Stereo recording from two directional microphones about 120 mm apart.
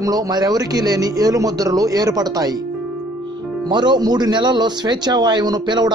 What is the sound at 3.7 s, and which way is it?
A man's voice, 40° right (ahead or behind).